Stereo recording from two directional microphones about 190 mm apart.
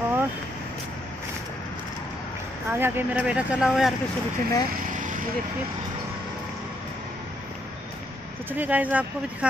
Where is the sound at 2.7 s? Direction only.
10° right (ahead or behind).